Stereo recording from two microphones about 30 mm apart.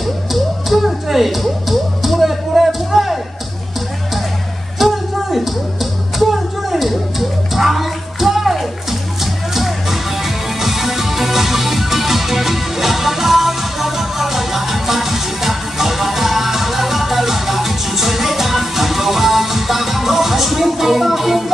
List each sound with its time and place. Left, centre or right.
0.0 s music: centre
4.7 s music: centre